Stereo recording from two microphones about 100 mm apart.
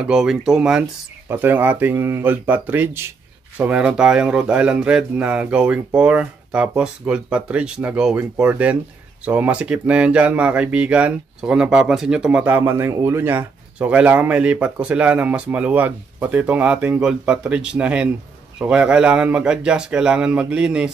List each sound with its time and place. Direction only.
0.0 s speech: 5° right (ahead or behind)
1.3 s speech: 20° right (ahead or behind)
12.4 s speech: 20° right (ahead or behind)